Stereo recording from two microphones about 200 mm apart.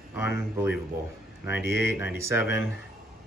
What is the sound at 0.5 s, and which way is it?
Speech, 10° right (ahead or behind).